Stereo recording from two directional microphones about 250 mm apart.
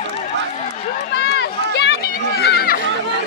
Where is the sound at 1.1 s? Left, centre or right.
Left.